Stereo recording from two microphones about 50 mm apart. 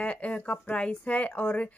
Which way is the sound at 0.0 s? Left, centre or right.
Left.